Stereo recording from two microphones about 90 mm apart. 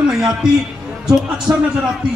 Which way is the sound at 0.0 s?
5° right (ahead or behind).